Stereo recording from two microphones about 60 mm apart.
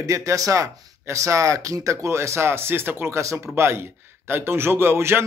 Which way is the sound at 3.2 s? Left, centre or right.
Right.